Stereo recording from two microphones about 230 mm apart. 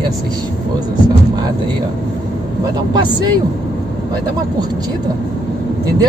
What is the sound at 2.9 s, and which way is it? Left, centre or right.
Speech, centre.